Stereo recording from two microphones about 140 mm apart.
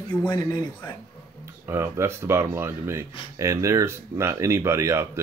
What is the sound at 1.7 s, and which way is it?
Speech, 20° right (ahead or behind).